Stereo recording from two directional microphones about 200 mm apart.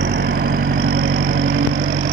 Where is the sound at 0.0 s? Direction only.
60° right (ahead or behind).